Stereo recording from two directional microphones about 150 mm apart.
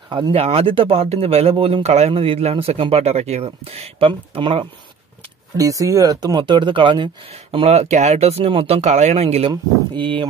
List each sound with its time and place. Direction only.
0.1 s speech: 35° right (ahead or behind)
5.6 s speech: 20° right (ahead or behind)
7.5 s speech: 45° right (ahead or behind)
9.5 s speech: 35° right (ahead or behind)